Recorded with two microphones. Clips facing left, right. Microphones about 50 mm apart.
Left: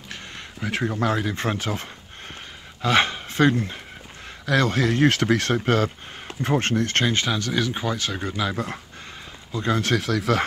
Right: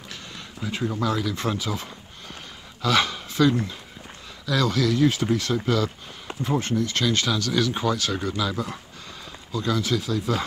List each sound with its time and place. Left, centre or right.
0.7 s speech: left
1.0 s speech: left
2.8 s speech: left
5.0 s speech: left
7.1 s speech: left
8.4 s speech: left
9.8 s speech: left